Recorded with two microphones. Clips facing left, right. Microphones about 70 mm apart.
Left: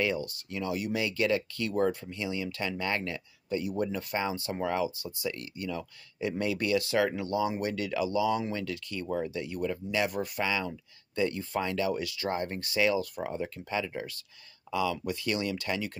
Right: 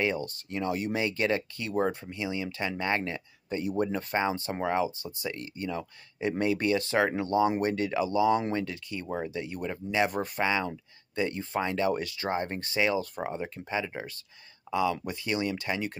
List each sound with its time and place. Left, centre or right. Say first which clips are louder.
0.0 s speech: right 1 dB; right